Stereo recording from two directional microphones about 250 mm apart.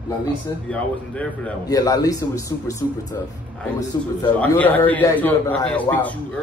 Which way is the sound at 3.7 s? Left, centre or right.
Centre.